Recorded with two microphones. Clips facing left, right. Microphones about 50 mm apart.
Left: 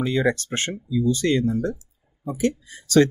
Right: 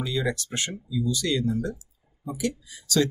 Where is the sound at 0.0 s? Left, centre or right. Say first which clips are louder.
Left 6 dB; left.